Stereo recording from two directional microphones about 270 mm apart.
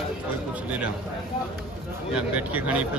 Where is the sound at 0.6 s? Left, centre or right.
Centre.